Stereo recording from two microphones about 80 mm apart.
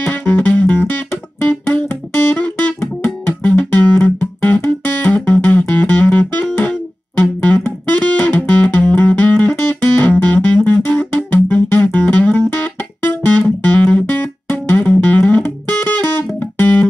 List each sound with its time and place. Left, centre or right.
0.0 s music: centre